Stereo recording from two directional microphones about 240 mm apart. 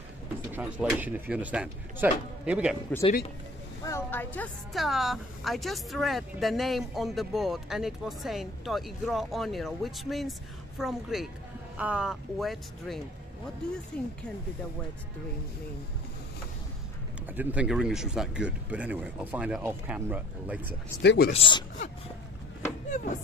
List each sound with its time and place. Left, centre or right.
0.5 s speech: centre
2.9 s speech: centre
17.3 s speech: centre
21.0 s speech: left
21.3 s speech: left
22.8 s speech: left